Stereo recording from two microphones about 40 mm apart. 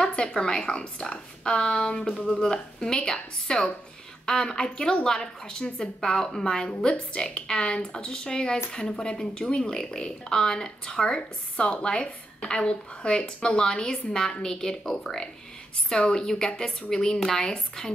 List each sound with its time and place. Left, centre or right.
0.0 s a woman's voice: left
15.9 s a woman's voice: left